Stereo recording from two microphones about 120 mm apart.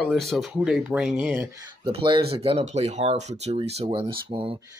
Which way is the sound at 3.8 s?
50° right (ahead or behind).